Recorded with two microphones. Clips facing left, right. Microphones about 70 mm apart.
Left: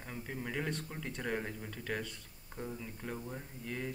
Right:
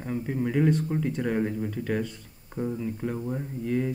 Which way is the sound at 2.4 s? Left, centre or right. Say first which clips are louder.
Right 13 dB; centre.